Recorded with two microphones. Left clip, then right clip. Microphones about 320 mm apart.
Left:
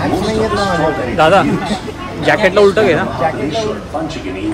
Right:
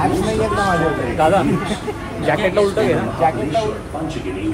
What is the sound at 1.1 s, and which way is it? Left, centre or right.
Speech, left.